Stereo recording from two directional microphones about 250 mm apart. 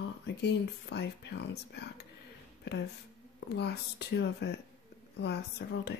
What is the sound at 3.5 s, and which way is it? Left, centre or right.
Speech, left.